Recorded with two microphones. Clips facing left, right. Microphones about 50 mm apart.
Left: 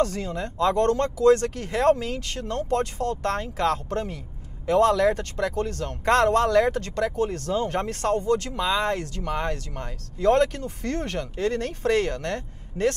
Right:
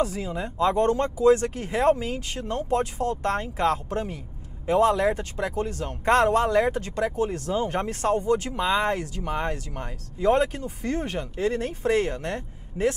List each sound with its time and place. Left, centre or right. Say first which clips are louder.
0.0 s speech: left 1 dB; centre